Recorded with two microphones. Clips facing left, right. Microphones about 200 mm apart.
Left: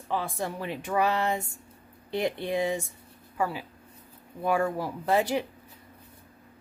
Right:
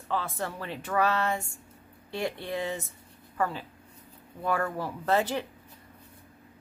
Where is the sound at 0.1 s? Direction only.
15° left (ahead or behind).